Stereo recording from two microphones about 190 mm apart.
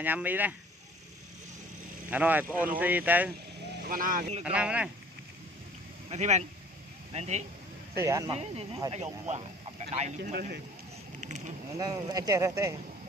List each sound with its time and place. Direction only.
0.0 s speech: 10° right (ahead or behind)
2.0 s speech: 10° right (ahead or behind)
3.9 s speech: 45° right (ahead or behind)
4.5 s speech: 5° right (ahead or behind)
6.0 s speech: 35° right (ahead or behind)
8.0 s speech: 15° right (ahead or behind)
8.4 s speech: 30° right (ahead or behind)
11.1 s vehicle: 40° right (ahead or behind)
11.8 s speech: 20° right (ahead or behind)